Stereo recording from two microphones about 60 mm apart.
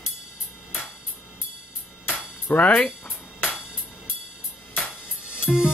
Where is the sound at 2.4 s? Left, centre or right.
Left.